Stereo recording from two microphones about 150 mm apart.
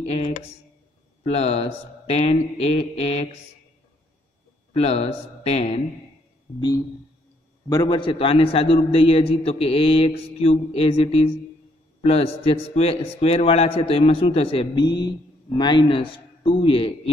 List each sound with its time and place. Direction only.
0.1 s speech: 45° left (ahead or behind)
4.7 s speech: 45° left (ahead or behind)
6.5 s speech: 15° left (ahead or behind)
7.7 s a man's voice: 30° left (ahead or behind)